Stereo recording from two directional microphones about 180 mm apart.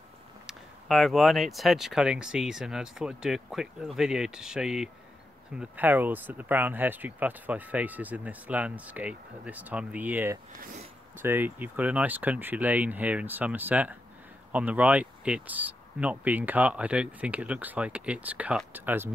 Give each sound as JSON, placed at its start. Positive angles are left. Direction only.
{"t": 0.5, "sound": "speech", "side_deg": 0}
{"t": 10.6, "sound": "speech", "side_deg": -45}
{"t": 11.1, "sound": "speech", "side_deg": -10}